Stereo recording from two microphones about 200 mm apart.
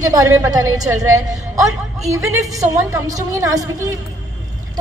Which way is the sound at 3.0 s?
15° right (ahead or behind).